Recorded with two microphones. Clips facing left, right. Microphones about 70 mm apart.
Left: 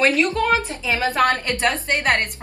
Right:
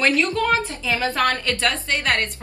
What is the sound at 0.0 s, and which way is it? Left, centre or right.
A woman's voice, left.